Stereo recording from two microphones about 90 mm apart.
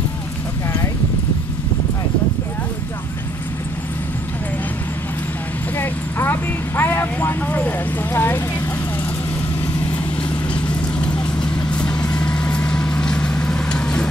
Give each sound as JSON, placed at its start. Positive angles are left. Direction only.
{"t": 5.8, "sound": "clip-clop", "side_deg": 25}
{"t": 6.8, "sound": "speech", "side_deg": 25}
{"t": 10.5, "sound": "vehicle", "side_deg": 10}